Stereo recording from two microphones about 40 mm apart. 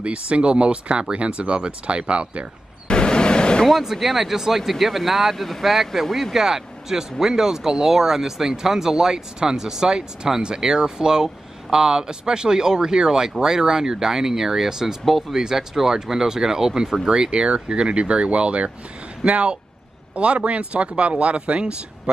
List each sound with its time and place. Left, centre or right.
0.0 s speech: right
2.9 s a sound: left
3.6 s speech: centre; by 22.1 s right